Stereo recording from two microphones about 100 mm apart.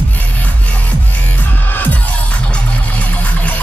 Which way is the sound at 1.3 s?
20° left (ahead or behind).